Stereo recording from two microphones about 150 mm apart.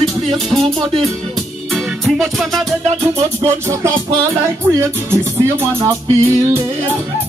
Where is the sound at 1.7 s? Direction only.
Centre (ahead or behind).